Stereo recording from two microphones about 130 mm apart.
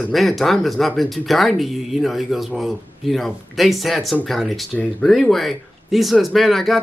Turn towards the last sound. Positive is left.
turn(degrees=0)  # may be behind; listen again after turning